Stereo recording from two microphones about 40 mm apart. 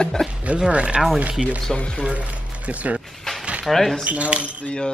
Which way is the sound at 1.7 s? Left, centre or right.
Left.